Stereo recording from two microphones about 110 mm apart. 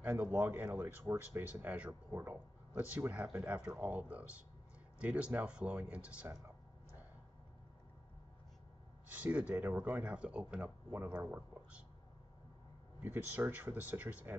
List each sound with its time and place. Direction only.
0.0 s speech: 20° right (ahead or behind)
1.5 s speech: 15° right (ahead or behind)
9.1 s speech: 15° right (ahead or behind)
13.0 s speech: 15° right (ahead or behind)